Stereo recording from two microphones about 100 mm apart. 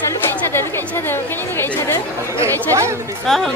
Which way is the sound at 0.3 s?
25° left (ahead or behind).